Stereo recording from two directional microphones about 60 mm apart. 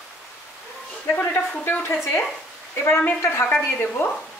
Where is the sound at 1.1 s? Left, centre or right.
Left.